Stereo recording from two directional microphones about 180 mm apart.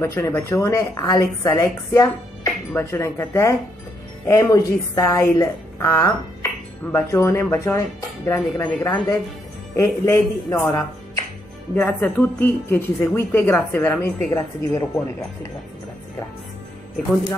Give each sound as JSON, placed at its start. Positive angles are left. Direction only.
{"t": 0.0, "sound": "a woman's voice", "side_deg": 15}